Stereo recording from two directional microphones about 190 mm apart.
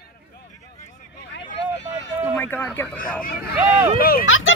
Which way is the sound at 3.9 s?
50° left (ahead or behind).